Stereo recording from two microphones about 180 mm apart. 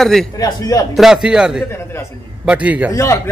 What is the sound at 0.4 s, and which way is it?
Speech, 20° left (ahead or behind).